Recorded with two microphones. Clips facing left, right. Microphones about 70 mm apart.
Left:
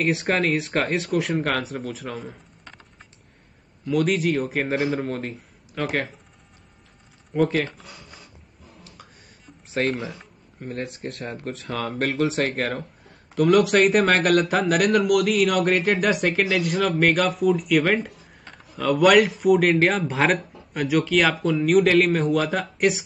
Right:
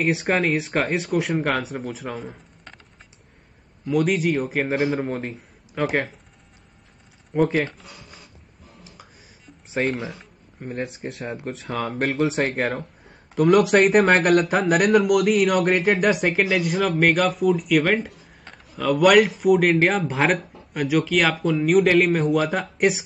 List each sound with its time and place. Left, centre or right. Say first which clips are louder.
0.0 s speech: right 1 dB; centre
3.8 s speech: right 1 dB; centre
7.3 s speech: right 1 dB; centre
7.7 s a sound: even; centre
9.7 s speech: even; centre
12.5 s a sound: right 2 dB; centre
13.3 s speech: right 1 dB; centre